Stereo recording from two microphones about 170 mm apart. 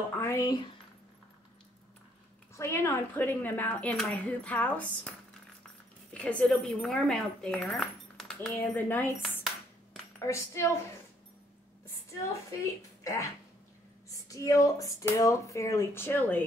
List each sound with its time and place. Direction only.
0.1 s speech: 15° left (ahead or behind)
2.5 s speech: 15° left (ahead or behind)
6.1 s speech: 5° left (ahead or behind)
10.1 s speech: 15° left (ahead or behind)
13.0 s speech: 20° left (ahead or behind)